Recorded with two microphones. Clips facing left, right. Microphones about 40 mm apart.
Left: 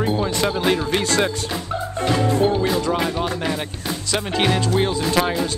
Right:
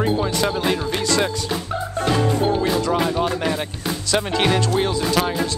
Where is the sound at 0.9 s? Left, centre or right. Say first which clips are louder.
Left 1 dB; left.